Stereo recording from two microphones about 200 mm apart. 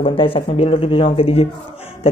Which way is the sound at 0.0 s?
25° left (ahead or behind).